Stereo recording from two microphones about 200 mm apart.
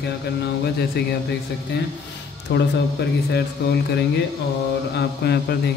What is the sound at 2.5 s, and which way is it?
Speech, 55° left (ahead or behind).